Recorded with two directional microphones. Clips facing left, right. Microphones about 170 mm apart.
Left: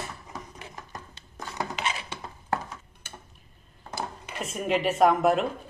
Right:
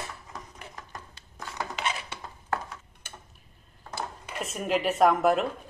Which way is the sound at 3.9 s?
Centre (ahead or behind).